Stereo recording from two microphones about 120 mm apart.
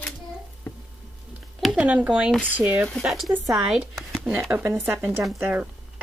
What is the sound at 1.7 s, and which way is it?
Speech, 10° right (ahead or behind).